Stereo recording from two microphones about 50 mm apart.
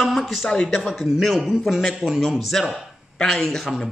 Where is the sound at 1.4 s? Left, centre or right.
Centre.